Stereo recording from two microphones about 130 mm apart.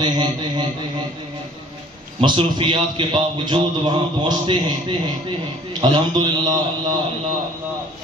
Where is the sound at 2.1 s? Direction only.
40° right (ahead or behind).